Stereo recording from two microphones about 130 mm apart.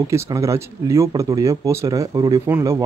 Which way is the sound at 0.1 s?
25° right (ahead or behind).